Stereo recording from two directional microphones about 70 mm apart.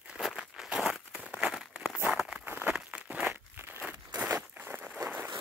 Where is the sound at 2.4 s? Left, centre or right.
Right.